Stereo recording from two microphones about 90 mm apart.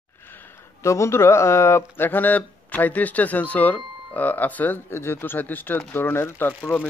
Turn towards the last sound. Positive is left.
turn(degrees=20)  # may be behind; listen again after turning